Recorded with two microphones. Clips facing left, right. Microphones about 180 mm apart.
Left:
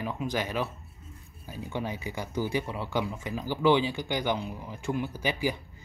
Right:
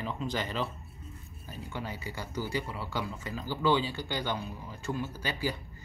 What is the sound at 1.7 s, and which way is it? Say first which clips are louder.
Speech: left 5 dB; 20° left (ahead or behind).